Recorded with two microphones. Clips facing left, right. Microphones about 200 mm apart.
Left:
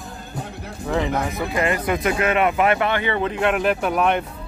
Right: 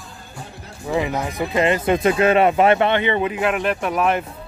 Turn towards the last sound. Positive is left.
turn(degrees=0)  # may be behind; listen again after turning